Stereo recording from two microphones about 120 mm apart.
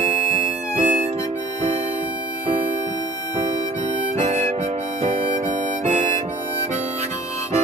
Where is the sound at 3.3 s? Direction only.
90° right.